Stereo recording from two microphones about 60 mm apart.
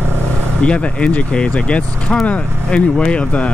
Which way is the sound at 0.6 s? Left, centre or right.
Centre.